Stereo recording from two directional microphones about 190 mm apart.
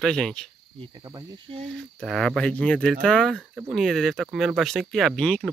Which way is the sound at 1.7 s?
Centre (ahead or behind).